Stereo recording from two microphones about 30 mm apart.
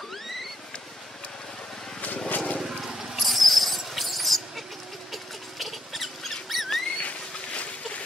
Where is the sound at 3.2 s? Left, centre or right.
Centre.